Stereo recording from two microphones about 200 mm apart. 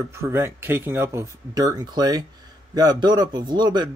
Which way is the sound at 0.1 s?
15° right (ahead or behind).